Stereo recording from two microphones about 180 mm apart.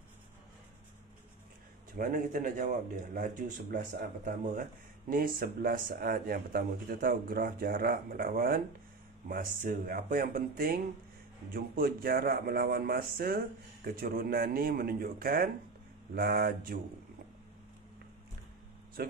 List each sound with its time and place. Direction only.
2.0 s a man's voice: 50° right (ahead or behind)
19.0 s speech: 55° right (ahead or behind)